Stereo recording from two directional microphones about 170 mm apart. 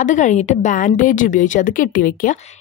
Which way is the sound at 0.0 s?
45° left (ahead or behind).